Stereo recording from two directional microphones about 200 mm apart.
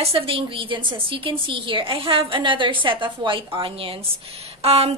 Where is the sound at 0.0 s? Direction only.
25° right (ahead or behind).